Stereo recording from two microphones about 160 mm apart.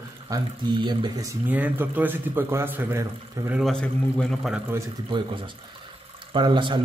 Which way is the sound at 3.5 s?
Centre (ahead or behind).